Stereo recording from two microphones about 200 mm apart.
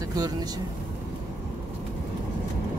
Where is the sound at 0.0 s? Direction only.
20° right (ahead or behind).